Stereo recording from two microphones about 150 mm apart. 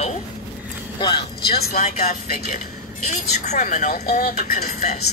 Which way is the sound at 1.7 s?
50° left (ahead or behind).